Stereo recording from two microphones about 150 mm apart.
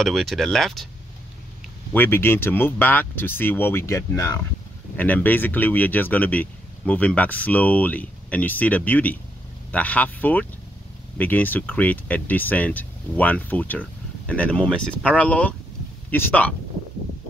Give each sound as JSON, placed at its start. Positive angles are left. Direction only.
{"t": 0.0, "sound": "speech", "side_deg": 0}
{"t": 2.0, "sound": "speech", "side_deg": 15}